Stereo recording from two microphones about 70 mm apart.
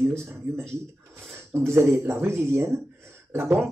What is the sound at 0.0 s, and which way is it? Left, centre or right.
Speech, right.